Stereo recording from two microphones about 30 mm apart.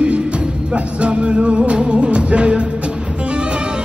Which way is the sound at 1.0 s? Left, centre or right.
Right.